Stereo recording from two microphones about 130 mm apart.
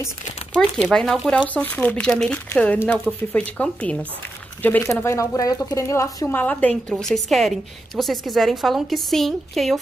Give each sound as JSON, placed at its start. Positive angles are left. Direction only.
{"t": 0.5, "sound": "a woman's voice", "side_deg": 5}
{"t": 1.5, "sound": "speech", "side_deg": 10}
{"t": 5.1, "sound": "speech", "side_deg": 25}
{"t": 6.2, "sound": "a woman's voice", "side_deg": 15}